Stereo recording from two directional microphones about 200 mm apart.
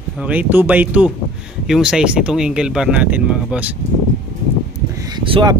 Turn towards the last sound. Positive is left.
turn(degrees=-25)  # may be behind; listen again after turning